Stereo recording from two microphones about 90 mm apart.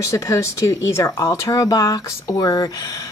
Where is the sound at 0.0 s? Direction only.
35° left (ahead or behind).